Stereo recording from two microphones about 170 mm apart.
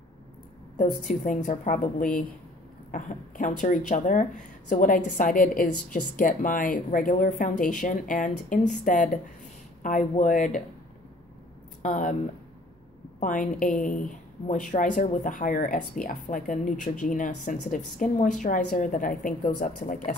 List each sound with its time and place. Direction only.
1.0 s speech: 50° left (ahead or behind)
11.8 s speech: 50° left (ahead or behind)
13.2 s speech: 50° left (ahead or behind)